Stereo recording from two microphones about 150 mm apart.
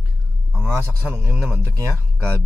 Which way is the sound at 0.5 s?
15° right (ahead or behind).